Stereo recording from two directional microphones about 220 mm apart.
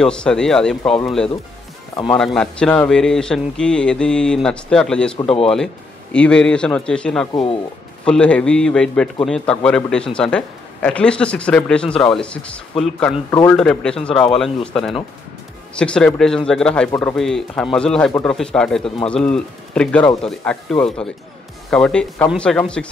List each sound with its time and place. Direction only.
0.0 s a man's voice: 5° left (ahead or behind)
5.2 s speech: 25° left (ahead or behind)
6.1 s a man's voice: 5° left (ahead or behind)
13.3 s speech: 15° left (ahead or behind)
13.6 s a man's voice: 5° left (ahead or behind)